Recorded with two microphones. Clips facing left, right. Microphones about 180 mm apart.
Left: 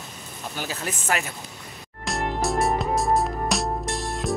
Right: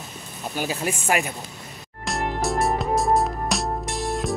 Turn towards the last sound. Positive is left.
turn(degrees=0)  # may be behind; listen again after turning